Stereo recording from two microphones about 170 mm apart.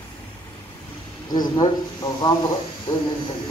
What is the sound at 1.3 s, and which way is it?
Speech, 25° left (ahead or behind).